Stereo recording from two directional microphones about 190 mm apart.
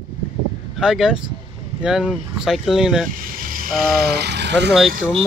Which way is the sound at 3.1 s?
45° right (ahead or behind).